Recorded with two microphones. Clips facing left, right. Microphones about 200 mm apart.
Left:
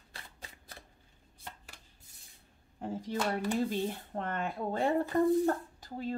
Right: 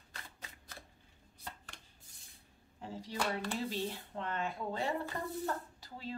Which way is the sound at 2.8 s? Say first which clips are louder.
Left 5 dB; 50° left (ahead or behind).